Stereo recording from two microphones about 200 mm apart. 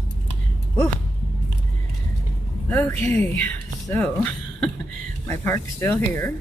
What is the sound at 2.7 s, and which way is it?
Speech, 10° left (ahead or behind).